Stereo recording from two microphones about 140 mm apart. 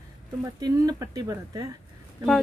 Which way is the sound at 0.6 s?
30° right (ahead or behind).